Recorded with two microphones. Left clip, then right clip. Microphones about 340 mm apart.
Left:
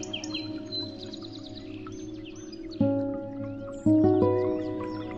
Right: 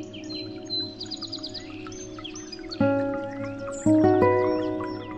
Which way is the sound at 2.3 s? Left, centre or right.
Right.